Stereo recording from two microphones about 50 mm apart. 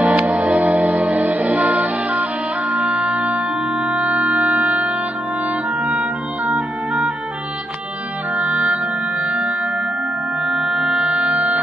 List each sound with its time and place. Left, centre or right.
0.0 s music: right
5.9 s organ: right
8.4 s music: right